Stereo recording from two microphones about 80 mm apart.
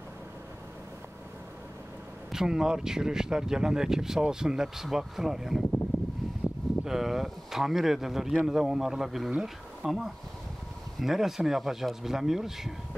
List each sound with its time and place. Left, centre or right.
2.3 s speech: centre
6.4 s a sound: left
6.8 s speech: centre